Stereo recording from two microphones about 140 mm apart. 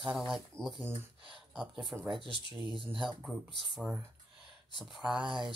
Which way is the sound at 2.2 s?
35° left (ahead or behind).